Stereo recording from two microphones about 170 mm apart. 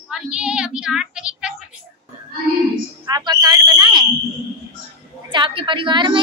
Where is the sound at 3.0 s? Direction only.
25° right (ahead or behind).